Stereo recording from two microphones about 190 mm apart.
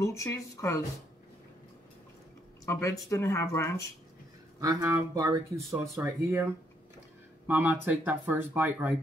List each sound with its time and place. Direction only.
0.0 s speech: 15° left (ahead or behind)
2.6 s speech: 15° left (ahead or behind)
4.6 s speech: 15° right (ahead or behind)